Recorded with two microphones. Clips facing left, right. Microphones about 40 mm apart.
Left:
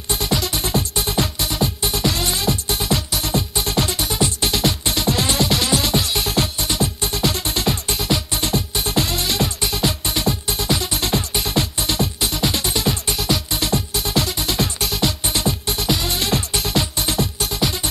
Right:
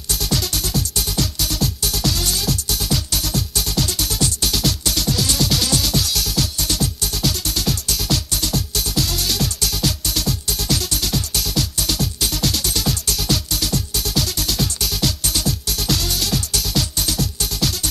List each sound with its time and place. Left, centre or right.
0.1 s music: left
5.5 s music: centre
6.6 s music: centre